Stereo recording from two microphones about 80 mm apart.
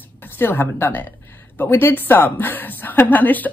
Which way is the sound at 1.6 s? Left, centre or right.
Left.